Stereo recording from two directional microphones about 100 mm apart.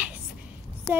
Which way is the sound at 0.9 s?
50° left (ahead or behind).